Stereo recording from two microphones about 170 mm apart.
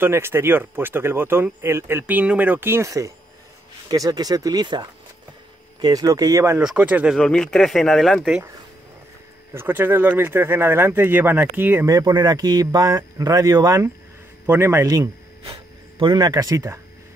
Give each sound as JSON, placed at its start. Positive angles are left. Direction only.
{"t": 0.0, "sound": "speech", "side_deg": -15}
{"t": 6.6, "sound": "speech", "side_deg": -5}
{"t": 7.2, "sound": "speech", "side_deg": 5}
{"t": 9.5, "sound": "speech", "side_deg": -15}
{"t": 15.4, "sound": "speech", "side_deg": -30}